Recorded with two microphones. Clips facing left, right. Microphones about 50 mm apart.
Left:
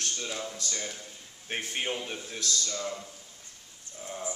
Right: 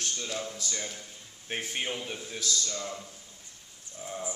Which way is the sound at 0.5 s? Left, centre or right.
Centre.